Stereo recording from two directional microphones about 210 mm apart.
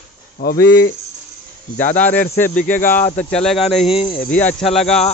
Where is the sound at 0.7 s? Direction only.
50° left (ahead or behind).